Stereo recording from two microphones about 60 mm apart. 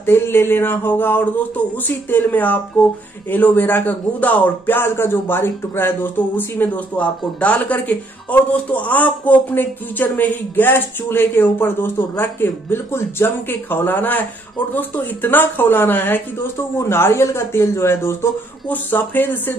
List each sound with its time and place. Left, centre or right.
0.0 s speech: left
16.7 s speech: left
18.7 s speech: left